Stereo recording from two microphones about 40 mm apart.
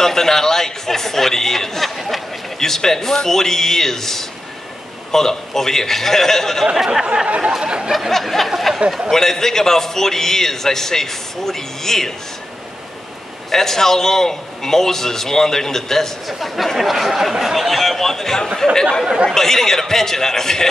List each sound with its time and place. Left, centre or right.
0.0 s a sound: centre
2.0 s speech: centre
2.6 s a man's voice: centre
7.2 s a sound: right
8.1 s speech: centre
9.1 s a man's voice: centre
13.5 s a man's voice: centre
16.3 s a man's voice: centre